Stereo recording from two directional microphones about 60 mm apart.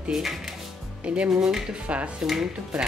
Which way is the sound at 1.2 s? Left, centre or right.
Centre.